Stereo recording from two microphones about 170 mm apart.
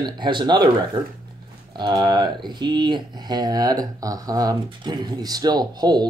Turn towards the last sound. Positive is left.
turn(degrees=-25)  # may be behind; listen again after turning